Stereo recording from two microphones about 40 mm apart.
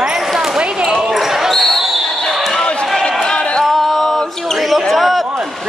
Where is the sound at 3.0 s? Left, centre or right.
Centre.